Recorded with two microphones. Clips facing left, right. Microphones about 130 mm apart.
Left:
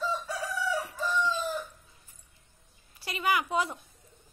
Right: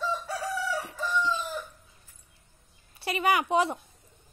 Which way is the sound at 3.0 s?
25° right (ahead or behind).